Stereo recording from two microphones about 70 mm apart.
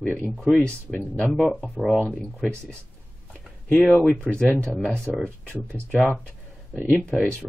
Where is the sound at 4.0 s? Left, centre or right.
Centre.